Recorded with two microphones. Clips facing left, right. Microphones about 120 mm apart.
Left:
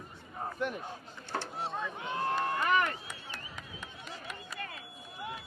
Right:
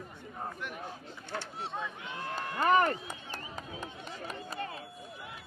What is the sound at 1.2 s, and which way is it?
A man's voice, 40° left (ahead or behind).